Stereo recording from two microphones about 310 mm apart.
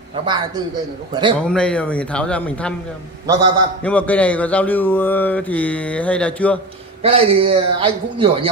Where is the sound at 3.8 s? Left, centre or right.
Centre.